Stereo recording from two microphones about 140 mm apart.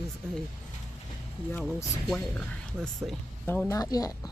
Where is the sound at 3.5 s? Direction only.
15° left (ahead or behind).